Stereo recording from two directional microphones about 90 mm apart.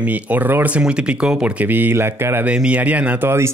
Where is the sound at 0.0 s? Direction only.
15° right (ahead or behind).